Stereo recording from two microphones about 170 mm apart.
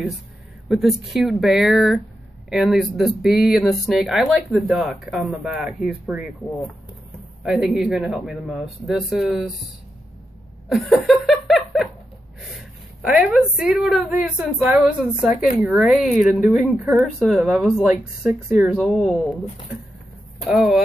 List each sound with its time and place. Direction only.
0.7 s a woman's voice: centre (ahead or behind)
7.4 s a woman's voice: centre (ahead or behind)
10.7 s laughter: centre (ahead or behind)
12.4 s a woman's voice: centre (ahead or behind)
20.4 s a woman's voice: centre (ahead or behind)